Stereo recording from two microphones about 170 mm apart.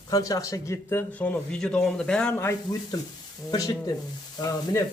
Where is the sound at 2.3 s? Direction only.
20° left (ahead or behind).